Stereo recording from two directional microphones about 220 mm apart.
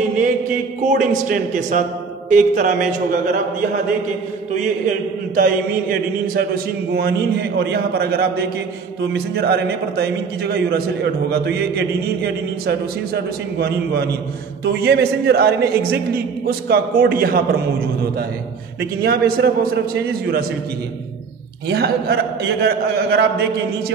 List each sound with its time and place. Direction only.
0.8 s a man's voice: 35° right (ahead or behind)
5.3 s a man's voice: 40° right (ahead or behind)
18.8 s a man's voice: 45° right (ahead or behind)
21.6 s a man's voice: 45° right (ahead or behind)